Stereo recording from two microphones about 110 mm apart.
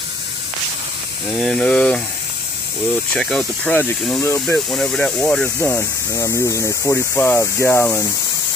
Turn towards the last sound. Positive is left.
turn(degrees=25)  # may be behind; listen again after turning